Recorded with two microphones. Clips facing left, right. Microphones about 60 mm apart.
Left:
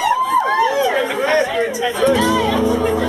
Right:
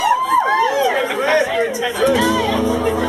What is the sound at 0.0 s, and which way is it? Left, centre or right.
Chatter, centre.